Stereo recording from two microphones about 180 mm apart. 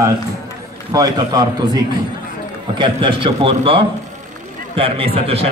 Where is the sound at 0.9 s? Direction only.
20° right (ahead or behind).